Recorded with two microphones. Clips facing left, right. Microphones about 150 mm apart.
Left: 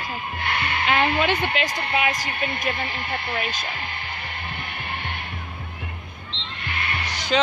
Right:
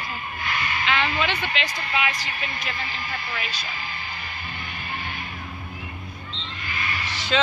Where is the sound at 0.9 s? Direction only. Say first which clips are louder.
Left 4 dB; 50° left (ahead or behind).